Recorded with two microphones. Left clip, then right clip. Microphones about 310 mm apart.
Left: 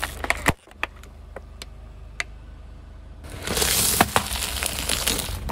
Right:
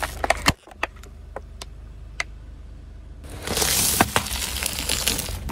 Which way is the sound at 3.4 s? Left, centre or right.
Centre.